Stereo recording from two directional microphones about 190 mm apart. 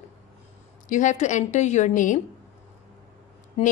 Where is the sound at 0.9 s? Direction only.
40° left (ahead or behind).